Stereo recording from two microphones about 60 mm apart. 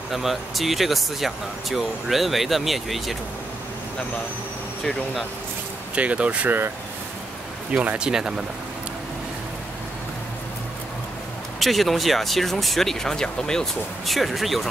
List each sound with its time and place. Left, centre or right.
0.1 s speech: centre
5.9 s speech: right
7.7 s speech: right
8.1 s speech: centre
11.6 s speech: centre
14.0 s speech: centre